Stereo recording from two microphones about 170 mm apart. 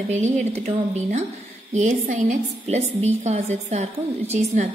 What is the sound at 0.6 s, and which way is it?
A woman's voice, 40° right (ahead or behind).